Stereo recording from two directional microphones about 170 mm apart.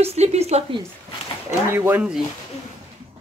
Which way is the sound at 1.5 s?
15° right (ahead or behind).